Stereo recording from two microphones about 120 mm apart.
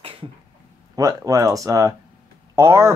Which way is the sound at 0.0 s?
45° right (ahead or behind).